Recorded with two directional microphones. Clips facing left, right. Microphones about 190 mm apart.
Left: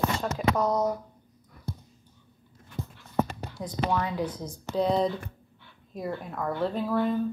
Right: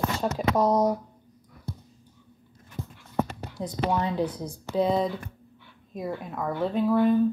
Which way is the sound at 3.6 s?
25° right (ahead or behind).